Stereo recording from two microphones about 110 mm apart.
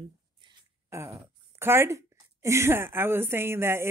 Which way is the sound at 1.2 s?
20° right (ahead or behind).